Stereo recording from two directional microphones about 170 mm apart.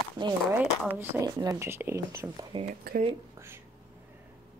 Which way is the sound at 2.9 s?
65° right (ahead or behind).